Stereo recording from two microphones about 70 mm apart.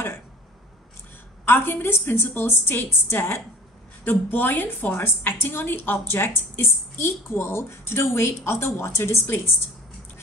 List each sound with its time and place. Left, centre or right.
1.4 s a woman's voice: left